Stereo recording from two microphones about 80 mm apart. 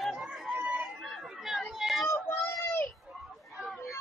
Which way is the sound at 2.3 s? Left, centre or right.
Left.